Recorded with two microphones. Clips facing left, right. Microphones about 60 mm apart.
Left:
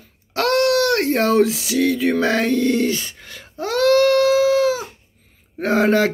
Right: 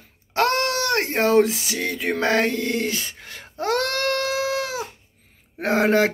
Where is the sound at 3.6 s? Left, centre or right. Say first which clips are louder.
Left 8 dB; right.